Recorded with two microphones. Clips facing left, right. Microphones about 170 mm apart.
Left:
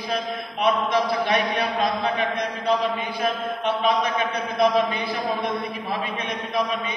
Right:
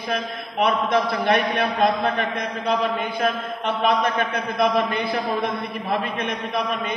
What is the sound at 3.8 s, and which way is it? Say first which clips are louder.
A man's voice: right 3 dB; 55° right (ahead or behind).